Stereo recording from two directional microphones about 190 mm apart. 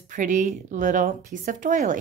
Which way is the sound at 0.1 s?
40° right (ahead or behind).